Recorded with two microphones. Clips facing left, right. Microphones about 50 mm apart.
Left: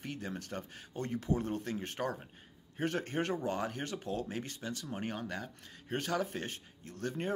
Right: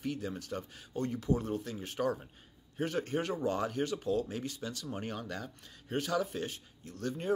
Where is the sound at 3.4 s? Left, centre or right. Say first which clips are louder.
Right 4 dB; left.